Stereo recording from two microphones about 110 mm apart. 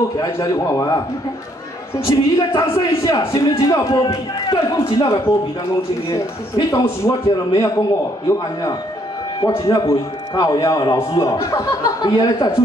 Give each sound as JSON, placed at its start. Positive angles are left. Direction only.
{"t": 0.2, "sound": "a man's voice", "side_deg": 35}
{"t": 2.0, "sound": "a man's voice", "side_deg": 30}
{"t": 4.5, "sound": "a man's voice", "side_deg": 50}
{"t": 6.0, "sound": "a man's voice", "side_deg": 30}
{"t": 9.4, "sound": "a man's voice", "side_deg": 35}